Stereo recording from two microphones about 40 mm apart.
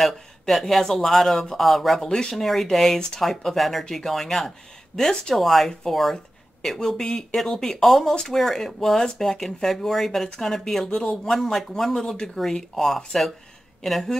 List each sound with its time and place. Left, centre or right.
0.0 s speech: centre
2.0 s speech: centre
2.3 s speech: centre
6.8 s speech: centre
11.3 s speech: centre